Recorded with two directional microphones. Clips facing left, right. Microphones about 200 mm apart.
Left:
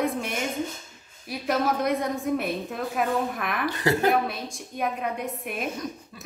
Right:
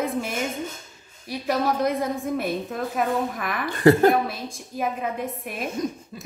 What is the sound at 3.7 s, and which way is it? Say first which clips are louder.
Speech: right 8 dB; 50° right (ahead or behind).